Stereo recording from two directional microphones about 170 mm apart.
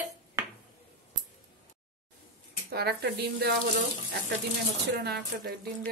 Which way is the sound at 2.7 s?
70° right (ahead or behind).